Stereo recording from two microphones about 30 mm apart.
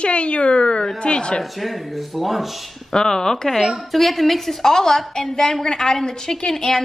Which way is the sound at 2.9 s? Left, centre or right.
Centre.